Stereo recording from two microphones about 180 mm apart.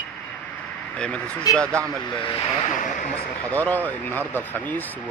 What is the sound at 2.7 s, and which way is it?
Speech, 45° left (ahead or behind).